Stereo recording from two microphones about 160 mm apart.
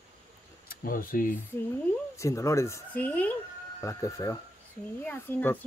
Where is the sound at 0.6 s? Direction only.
60° left (ahead or behind).